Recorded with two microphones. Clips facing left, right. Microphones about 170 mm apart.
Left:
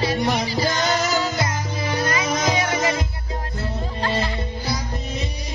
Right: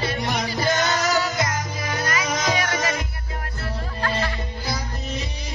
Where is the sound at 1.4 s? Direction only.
25° left (ahead or behind).